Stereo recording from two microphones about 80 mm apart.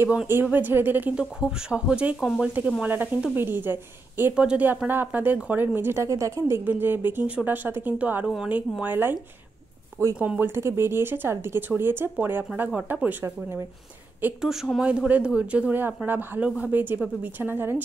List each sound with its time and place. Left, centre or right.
0.3 s speech: right
1.1 s speech: centre
2.1 s speech: centre
2.4 s speech: centre
2.8 s speech: right
6.0 s a woman's voice: right
10.1 s speech: centre
10.4 s speech: right
14.4 s speech: centre; by 16.4 s right
16.4 s speech: centre
16.7 s speech: right